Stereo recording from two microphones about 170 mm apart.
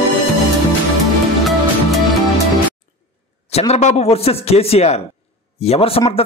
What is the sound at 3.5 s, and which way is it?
Speech, 40° left (ahead or behind).